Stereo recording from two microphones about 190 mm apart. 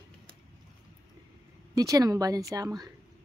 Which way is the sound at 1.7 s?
20° right (ahead or behind).